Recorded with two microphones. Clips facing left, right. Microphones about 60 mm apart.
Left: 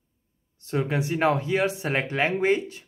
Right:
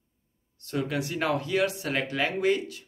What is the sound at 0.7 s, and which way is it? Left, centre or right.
Speech, left.